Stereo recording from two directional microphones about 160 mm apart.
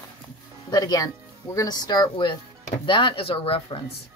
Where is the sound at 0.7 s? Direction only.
25° left (ahead or behind).